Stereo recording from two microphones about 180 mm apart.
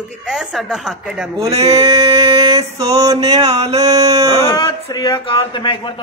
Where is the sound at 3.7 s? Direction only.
20° right (ahead or behind).